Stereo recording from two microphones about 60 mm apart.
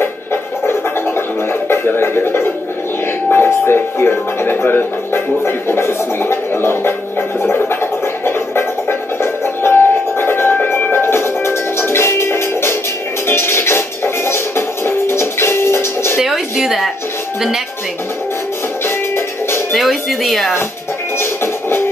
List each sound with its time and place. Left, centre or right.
0.0 s music: left
16.2 s music: centre
18.9 s music: left
19.7 s a sound: centre
21.2 s music: left